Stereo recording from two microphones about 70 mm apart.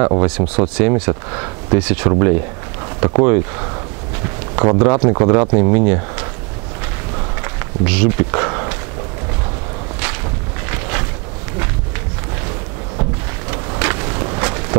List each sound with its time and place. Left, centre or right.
0.0 s speech: centre
7.4 s walk: centre
10.7 s boat: centre
13.5 s vehicle: centre